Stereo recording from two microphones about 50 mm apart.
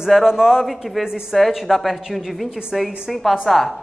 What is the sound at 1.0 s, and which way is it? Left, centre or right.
A man's voice, centre.